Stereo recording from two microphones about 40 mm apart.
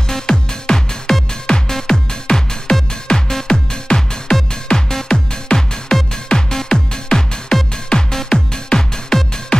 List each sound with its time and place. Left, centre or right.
0.1 s music: centre